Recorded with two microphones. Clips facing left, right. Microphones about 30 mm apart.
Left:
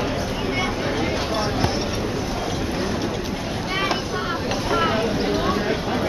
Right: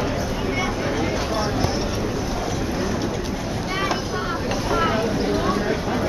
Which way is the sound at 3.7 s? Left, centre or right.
Left.